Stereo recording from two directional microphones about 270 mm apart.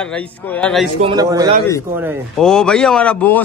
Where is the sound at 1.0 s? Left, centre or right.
Centre.